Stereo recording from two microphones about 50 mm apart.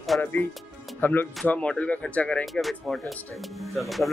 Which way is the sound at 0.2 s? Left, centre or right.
Left.